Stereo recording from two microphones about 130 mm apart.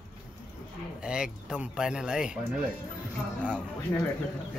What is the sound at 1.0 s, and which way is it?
Speech, 5° right (ahead or behind).